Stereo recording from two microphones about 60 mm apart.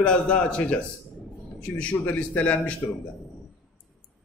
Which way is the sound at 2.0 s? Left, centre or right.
Left.